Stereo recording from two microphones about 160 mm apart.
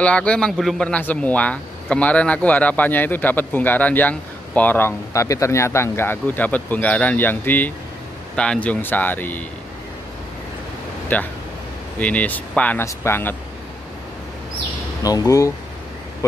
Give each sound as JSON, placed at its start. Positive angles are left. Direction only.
{"t": 0.0, "sound": "speech", "side_deg": 5}
{"t": 11.1, "sound": "speech", "side_deg": 10}
{"t": 15.0, "sound": "speech", "side_deg": 20}